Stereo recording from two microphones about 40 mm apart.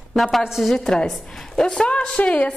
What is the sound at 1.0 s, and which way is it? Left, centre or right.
Speech, centre.